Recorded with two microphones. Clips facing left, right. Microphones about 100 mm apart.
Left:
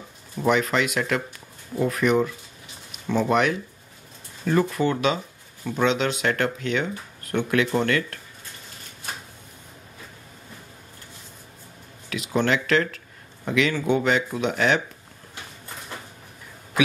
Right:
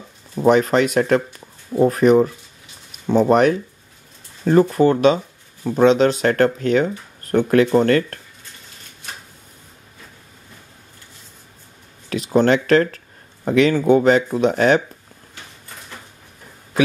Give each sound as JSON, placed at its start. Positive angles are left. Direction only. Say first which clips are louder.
{"t": 0.4, "sound": "speech", "louder": "right 7 dB", "side_deg": -40}
{"t": 12.1, "sound": "speech", "louder": "right 7 dB", "side_deg": -40}